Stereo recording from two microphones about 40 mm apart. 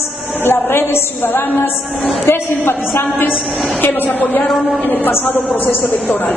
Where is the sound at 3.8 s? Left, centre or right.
Left.